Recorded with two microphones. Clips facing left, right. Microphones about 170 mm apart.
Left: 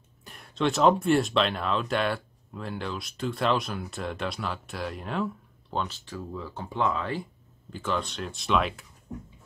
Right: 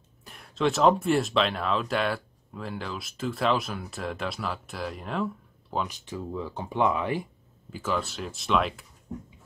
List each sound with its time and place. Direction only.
0.2 s speech: centre (ahead or behind)
5.9 s speech: 20° right (ahead or behind)
7.7 s speech: 5° right (ahead or behind)